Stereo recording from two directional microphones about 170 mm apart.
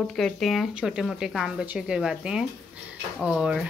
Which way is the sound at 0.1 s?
Centre (ahead or behind).